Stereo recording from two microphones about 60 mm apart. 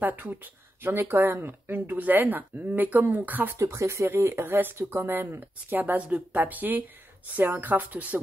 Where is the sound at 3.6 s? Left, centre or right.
Right.